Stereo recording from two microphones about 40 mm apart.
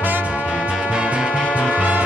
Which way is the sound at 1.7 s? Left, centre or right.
Right.